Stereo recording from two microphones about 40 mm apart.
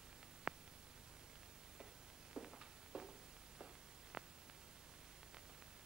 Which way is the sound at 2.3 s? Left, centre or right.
Centre.